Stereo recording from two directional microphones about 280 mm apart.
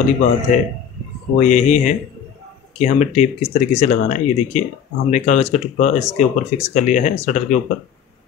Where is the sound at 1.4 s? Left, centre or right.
Left.